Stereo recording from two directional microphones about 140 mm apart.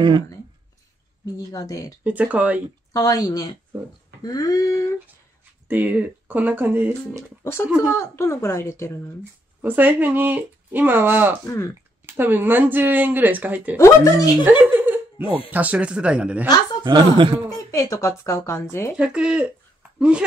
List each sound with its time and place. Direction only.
1.2 s speech: 25° left (ahead or behind)
2.0 s speech: 10° right (ahead or behind)
2.9 s speech: 25° left (ahead or behind)
5.7 s speech: 10° right (ahead or behind)
7.9 s speech: 20° left (ahead or behind)
9.6 s speech: 15° right (ahead or behind)
11.4 s speech: 20° left (ahead or behind)
12.2 s speech: 15° right (ahead or behind)
13.7 s speech: 20° left (ahead or behind)
14.4 s chuckle: 15° right (ahead or behind)
15.5 s speech: 10° right (ahead or behind)
16.8 s a woman's voice: 35° right (ahead or behind)
17.5 s speech: 20° left (ahead or behind)
18.9 s speech: 5° right (ahead or behind)